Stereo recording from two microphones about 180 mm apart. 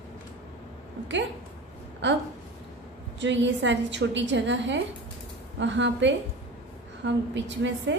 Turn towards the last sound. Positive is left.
turn(degrees=-85)